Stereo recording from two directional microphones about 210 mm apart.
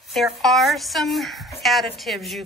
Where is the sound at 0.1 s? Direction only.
Centre (ahead or behind).